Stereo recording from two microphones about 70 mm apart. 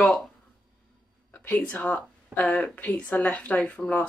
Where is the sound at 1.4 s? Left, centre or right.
Left.